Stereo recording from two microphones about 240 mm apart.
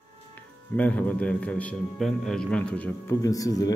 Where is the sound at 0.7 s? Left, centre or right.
Centre.